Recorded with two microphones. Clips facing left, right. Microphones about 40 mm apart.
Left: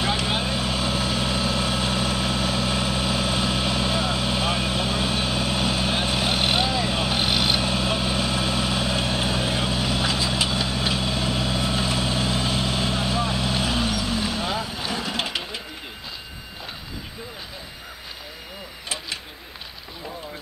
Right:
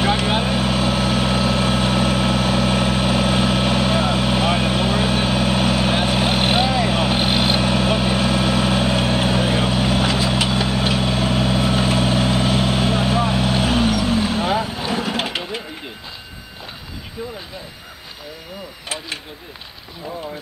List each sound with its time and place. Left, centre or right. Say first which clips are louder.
0.0 s vehicle: right 5 dB; right
7.6 s vehicle: right 6 dB; right